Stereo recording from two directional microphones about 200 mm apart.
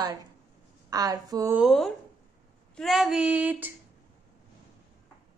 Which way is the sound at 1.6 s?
Centre (ahead or behind).